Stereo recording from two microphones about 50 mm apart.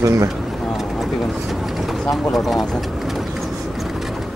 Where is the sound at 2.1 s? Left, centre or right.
Centre.